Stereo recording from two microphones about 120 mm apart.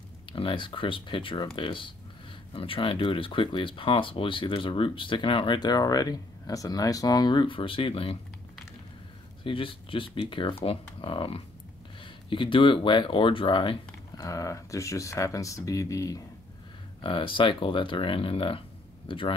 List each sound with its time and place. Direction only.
0.3 s speech: 45° left (ahead or behind)
9.4 s speech: 45° left (ahead or behind)
14.2 s speech: 25° left (ahead or behind)
17.0 s speech: 45° left (ahead or behind)